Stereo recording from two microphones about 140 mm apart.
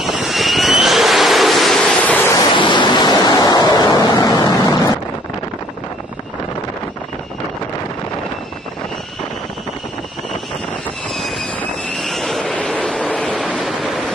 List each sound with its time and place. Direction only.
0.0 s vehicle: centre (ahead or behind)
2.5 s waves: 35° left (ahead or behind)
12.0 s vehicle: centre (ahead or behind)
13.5 s waves: centre (ahead or behind)